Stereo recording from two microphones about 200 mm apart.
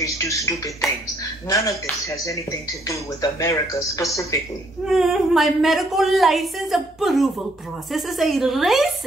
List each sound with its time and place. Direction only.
0.0 s speech: 15° left (ahead or behind)
1.5 s speech: 15° left (ahead or behind)
2.9 s speech: 15° left (ahead or behind)
4.8 s a woman's voice: centre (ahead or behind)